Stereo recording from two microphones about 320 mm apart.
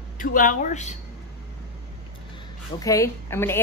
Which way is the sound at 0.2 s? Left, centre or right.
Left.